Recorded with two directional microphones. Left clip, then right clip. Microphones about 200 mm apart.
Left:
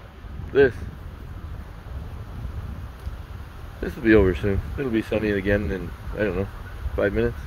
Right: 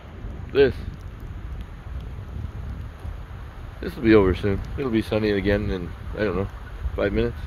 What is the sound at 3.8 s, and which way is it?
Speech, 15° right (ahead or behind).